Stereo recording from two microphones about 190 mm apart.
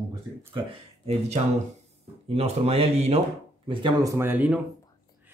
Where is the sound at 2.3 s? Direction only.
35° right (ahead or behind).